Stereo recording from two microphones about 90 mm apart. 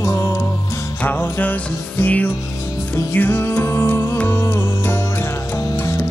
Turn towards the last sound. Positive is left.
turn(degrees=30)  # may be behind; listen again after turning